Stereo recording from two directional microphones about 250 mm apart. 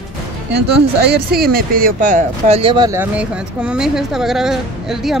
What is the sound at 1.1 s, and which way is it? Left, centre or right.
Speech, right.